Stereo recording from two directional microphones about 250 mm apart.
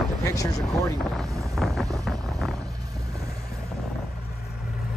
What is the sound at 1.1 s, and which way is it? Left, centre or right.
Wind noise, centre.